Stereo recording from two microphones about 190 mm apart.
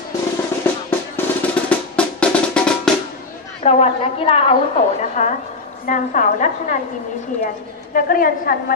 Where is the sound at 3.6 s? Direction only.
30° left (ahead or behind).